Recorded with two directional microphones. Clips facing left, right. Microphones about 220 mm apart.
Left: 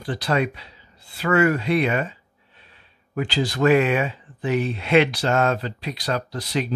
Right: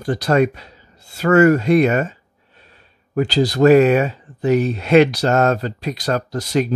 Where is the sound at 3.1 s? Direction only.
40° right (ahead or behind).